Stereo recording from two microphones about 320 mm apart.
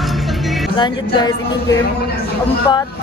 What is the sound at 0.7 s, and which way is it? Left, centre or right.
Speech, centre.